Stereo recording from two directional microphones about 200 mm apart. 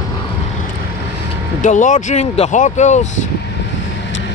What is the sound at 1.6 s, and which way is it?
Speech, 40° left (ahead or behind).